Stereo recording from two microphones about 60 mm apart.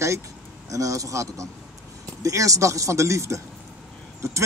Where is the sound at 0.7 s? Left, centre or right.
Right.